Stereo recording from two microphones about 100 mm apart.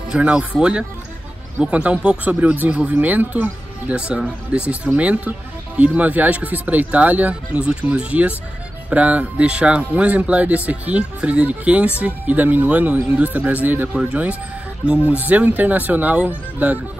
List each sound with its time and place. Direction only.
0.1 s speech: 10° right (ahead or behind)